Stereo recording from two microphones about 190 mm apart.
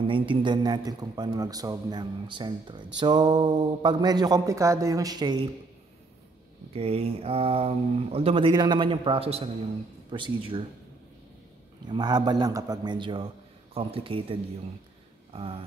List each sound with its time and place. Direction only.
0.0 s a man's voice: 25° right (ahead or behind)
6.7 s a man's voice: 30° right (ahead or behind)
11.9 s a man's voice: 20° right (ahead or behind)